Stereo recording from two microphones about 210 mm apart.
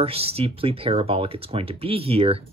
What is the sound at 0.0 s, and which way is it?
Speech, 30° right (ahead or behind).